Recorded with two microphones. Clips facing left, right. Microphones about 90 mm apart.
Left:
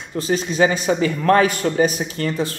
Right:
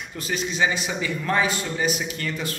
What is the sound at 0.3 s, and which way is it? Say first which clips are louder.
A man's voice: left 6 dB; 40° left (ahead or behind).